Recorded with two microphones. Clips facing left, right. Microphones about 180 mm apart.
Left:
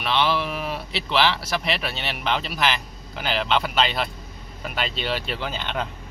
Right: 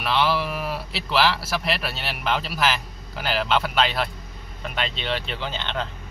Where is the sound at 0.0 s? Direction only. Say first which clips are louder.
Even; 5° right (ahead or behind).